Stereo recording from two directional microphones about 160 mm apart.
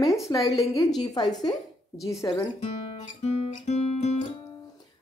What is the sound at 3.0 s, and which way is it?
Guitar, 45° left (ahead or behind).